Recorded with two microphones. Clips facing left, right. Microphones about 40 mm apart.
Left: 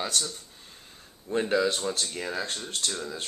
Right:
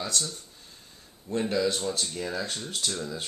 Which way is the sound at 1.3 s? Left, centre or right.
Left.